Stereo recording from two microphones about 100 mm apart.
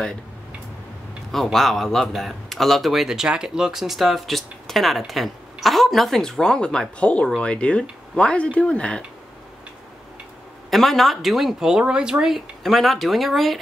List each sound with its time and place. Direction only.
1.3 s speech: centre (ahead or behind)
10.7 s speech: centre (ahead or behind)